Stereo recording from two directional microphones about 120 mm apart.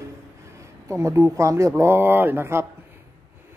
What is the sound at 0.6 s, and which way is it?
Speech, 25° right (ahead or behind).